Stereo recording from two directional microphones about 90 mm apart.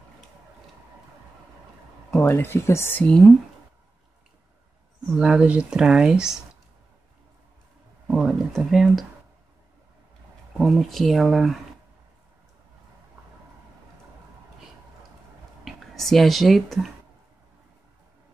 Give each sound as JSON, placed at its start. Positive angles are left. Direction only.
{"t": 2.0, "sound": "a sound", "side_deg": 15}
{"t": 2.3, "sound": "speech", "side_deg": 25}
{"t": 5.0, "sound": "speech", "side_deg": -5}
{"t": 8.2, "sound": "a sound", "side_deg": 0}
{"t": 10.6, "sound": "speech", "side_deg": 0}
{"t": 15.6, "sound": "speech", "side_deg": 0}